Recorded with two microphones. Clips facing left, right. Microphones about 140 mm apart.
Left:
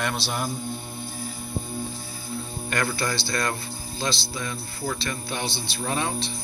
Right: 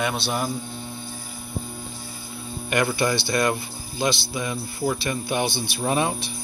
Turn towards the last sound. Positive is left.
turn(degrees=-15)  # may be behind; listen again after turning